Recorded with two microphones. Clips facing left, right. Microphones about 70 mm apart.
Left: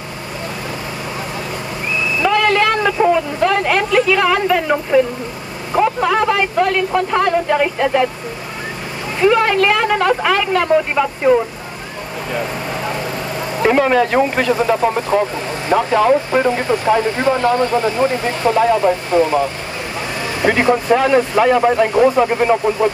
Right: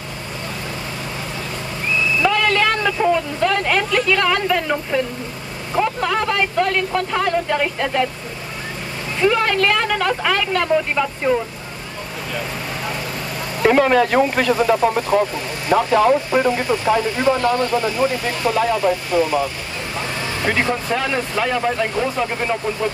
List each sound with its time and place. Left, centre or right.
2.2 s speech: centre
9.2 s speech: centre
13.7 s speech: left
18.6 s speech: centre
18.9 s speech: left
20.4 s speech: left